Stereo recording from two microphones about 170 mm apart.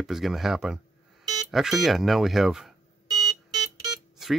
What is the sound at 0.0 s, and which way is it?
Speech, centre (ahead or behind).